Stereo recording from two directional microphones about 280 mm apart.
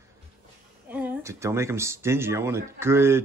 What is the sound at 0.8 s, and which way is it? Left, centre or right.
Speech, centre.